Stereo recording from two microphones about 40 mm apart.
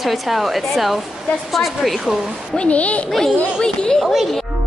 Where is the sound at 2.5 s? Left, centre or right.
Left.